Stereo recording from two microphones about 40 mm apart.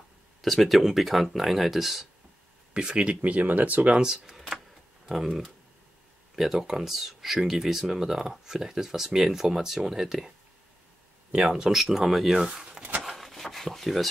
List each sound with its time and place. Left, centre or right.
0.4 s speech: centre
2.7 s speech: right
3.3 s speech: right
3.9 s speech: centre
4.3 s a sound: centre
5.0 s speech: centre
11.7 s speech: centre
13.0 s a sound: centre